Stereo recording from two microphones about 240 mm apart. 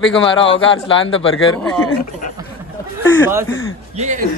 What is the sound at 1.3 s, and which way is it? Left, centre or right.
Speech, left.